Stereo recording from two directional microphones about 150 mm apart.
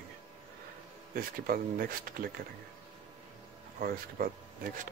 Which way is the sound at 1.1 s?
75° right (ahead or behind).